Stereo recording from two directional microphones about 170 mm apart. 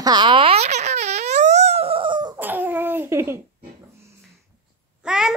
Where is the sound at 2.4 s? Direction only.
10° right (ahead or behind).